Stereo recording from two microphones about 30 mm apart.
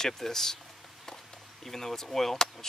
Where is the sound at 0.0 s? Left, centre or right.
Centre.